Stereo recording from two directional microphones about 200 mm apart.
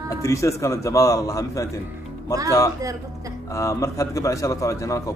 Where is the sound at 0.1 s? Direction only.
15° left (ahead or behind).